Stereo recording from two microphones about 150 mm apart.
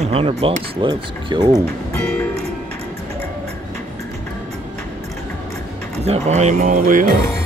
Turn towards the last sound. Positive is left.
turn(degrees=-65)  # may be behind; listen again after turning